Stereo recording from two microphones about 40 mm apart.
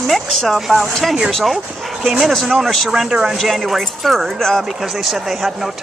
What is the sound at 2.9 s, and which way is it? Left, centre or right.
Speech, centre.